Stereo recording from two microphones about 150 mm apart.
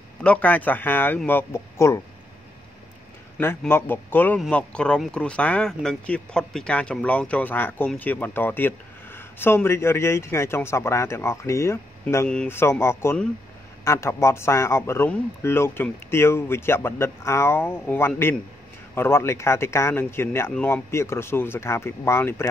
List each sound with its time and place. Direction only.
0.2 s speech: 10° left (ahead or behind)
3.3 s speech: 15° left (ahead or behind)
12.3 s speech: 5° left (ahead or behind)
12.5 s speech: 15° left (ahead or behind)